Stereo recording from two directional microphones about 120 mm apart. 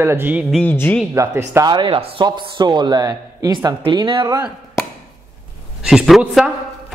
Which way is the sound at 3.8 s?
40° right (ahead or behind).